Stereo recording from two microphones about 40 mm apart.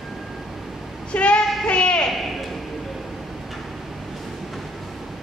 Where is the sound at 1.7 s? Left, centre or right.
Left.